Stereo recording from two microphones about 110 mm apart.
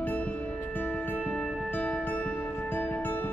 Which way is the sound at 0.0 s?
15° left (ahead or behind).